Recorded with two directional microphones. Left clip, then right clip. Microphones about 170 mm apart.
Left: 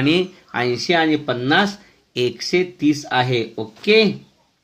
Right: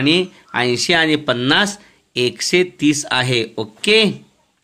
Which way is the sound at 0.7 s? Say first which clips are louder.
Right 2 dB; 35° right (ahead or behind).